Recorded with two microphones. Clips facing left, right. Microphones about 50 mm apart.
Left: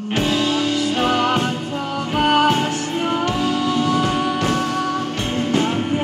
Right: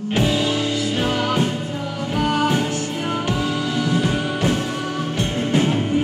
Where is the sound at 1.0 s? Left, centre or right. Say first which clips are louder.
Left 3 dB; left.